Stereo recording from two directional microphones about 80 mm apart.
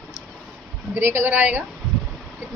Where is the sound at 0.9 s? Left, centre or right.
Right.